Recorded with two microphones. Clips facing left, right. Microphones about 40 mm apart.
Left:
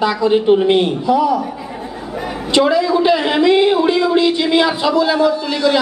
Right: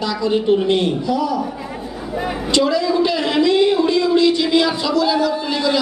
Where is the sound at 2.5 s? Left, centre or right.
Left.